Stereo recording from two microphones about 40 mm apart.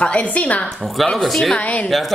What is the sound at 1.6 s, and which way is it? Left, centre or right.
Speech, left.